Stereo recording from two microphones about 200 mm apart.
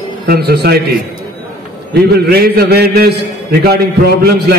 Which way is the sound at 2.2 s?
50° right (ahead or behind).